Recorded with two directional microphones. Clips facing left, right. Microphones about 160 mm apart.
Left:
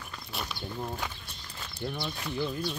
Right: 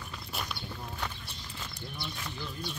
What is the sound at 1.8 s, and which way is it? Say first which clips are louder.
Speech: left 8 dB; 60° left (ahead or behind).